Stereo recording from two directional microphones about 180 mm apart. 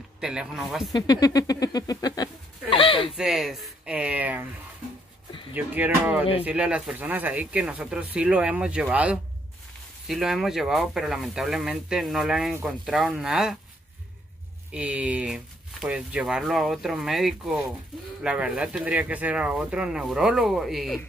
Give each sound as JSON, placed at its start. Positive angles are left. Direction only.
{"t": 0.2, "sound": "speech", "side_deg": -5}
{"t": 0.9, "sound": "speech", "side_deg": 25}
{"t": 3.2, "sound": "speech", "side_deg": 0}
{"t": 5.5, "sound": "speech", "side_deg": -10}
{"t": 14.7, "sound": "speech", "side_deg": -5}